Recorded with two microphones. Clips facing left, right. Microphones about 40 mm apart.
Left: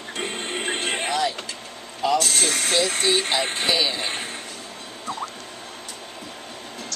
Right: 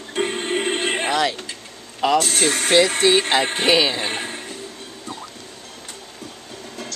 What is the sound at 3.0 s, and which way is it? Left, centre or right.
Speech, right.